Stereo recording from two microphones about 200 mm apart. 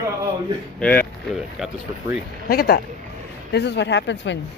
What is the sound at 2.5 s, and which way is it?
Speech, 50° left (ahead or behind).